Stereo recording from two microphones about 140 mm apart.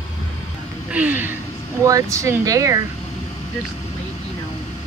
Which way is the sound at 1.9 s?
25° right (ahead or behind).